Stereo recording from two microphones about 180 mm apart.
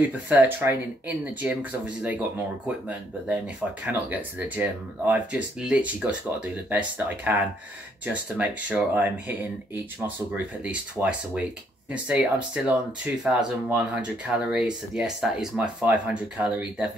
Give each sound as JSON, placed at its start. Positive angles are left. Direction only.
{"t": 0.0, "sound": "speech", "side_deg": -10}